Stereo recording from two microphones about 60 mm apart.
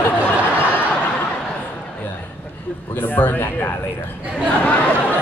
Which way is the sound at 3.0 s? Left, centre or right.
Left.